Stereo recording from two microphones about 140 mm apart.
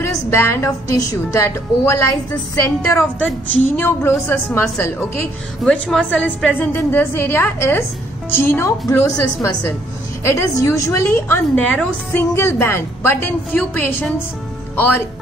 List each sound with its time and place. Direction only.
0.0 s music: 20° left (ahead or behind)
1.3 s a woman's voice: 20° left (ahead or behind)